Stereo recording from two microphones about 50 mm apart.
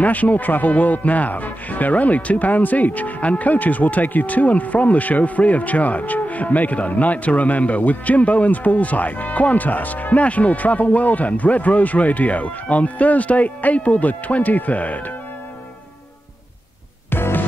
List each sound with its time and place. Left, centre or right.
0.0 s speech: left
17.1 s music: left